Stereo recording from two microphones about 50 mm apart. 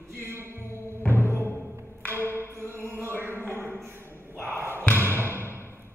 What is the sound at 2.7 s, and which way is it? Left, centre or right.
Chant, right.